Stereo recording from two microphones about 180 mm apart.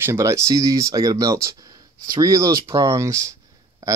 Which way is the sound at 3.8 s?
20° right (ahead or behind).